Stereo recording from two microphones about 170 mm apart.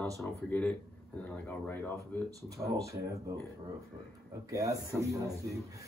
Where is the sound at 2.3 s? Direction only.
20° right (ahead or behind).